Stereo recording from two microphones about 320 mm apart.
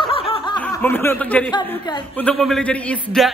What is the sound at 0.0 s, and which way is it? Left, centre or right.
Snicker, centre.